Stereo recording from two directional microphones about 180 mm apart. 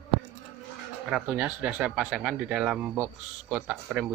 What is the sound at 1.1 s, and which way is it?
Speech, 5° right (ahead or behind).